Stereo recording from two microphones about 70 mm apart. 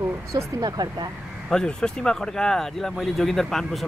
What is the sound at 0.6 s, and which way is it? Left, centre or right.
Speech, right.